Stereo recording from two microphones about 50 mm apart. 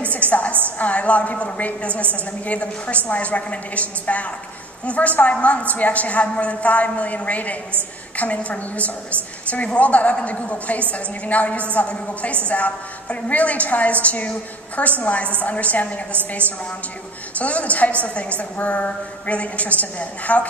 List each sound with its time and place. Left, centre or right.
0.0 s music: left
0.7 s a woman's voice: left
17.4 s a woman's voice: left